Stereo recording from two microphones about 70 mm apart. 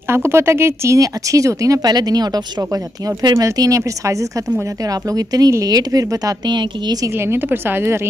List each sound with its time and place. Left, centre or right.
0.1 s a woman's voice: right
0.9 s speech: right
1.8 s speech: right
5.1 s speech: right
6.4 s a woman's voice: right
7.2 s a woman's voice: right